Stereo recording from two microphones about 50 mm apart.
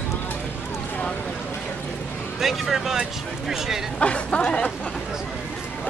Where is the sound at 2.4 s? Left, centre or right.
Centre.